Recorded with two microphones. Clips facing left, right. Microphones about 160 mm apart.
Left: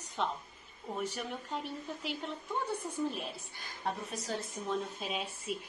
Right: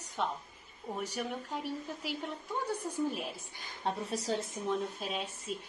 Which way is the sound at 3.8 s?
30° right (ahead or behind).